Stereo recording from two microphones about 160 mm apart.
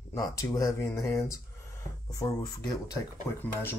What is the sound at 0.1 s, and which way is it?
Speech, 20° left (ahead or behind).